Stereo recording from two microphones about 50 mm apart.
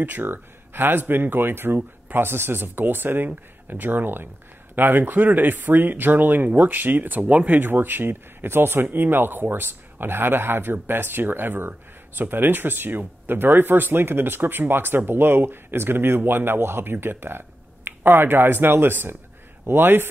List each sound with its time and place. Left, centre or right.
0.0 s a man's voice: right